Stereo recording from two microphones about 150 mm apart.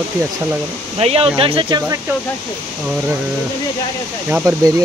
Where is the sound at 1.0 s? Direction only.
40° right (ahead or behind).